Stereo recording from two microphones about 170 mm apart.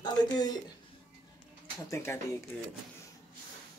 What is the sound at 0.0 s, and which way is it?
Speech, 25° left (ahead or behind).